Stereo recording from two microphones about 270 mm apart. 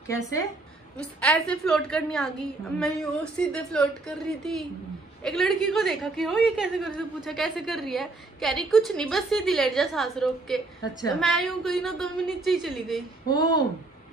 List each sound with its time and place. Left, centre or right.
0.9 s a woman's voice: centre
5.2 s a woman's voice: centre
10.8 s a woman's voice: centre
11.1 s a woman's voice: centre
13.3 s a woman's voice: centre